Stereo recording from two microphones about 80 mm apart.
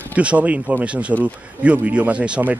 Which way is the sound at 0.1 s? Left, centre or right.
Centre.